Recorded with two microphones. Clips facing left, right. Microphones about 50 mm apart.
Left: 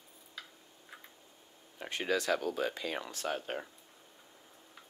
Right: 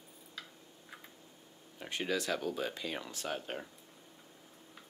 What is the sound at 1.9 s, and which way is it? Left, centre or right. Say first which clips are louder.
Speech: left 3 dB; left.